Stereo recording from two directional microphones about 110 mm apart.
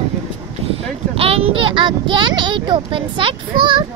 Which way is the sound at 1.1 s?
60° right (ahead or behind).